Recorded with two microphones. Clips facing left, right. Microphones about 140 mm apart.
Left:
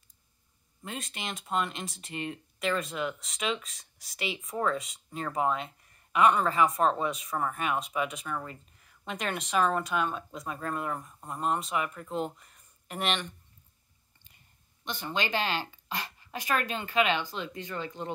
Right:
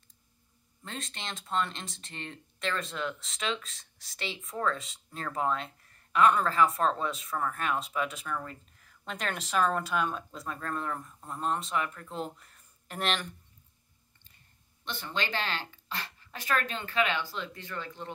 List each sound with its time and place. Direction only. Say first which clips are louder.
0.8 s speech: left 2 dB; 5° left (ahead or behind)
10.6 s speech: left 2 dB; 10° left (ahead or behind)
11.3 s speech: left 1 dB; 5° left (ahead or behind)
14.9 s speech: left 3 dB; 15° left (ahead or behind)